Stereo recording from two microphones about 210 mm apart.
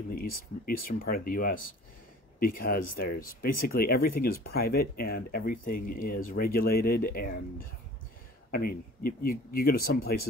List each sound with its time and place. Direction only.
0.1 s speech: 45° left (ahead or behind)